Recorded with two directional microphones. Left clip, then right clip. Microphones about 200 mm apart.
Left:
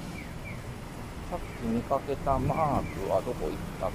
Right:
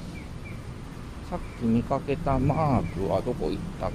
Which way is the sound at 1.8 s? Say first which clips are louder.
Right 1 dB; 45° right (ahead or behind).